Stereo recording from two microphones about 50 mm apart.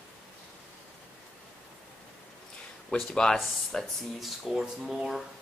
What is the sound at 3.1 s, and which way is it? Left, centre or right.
Speech, centre.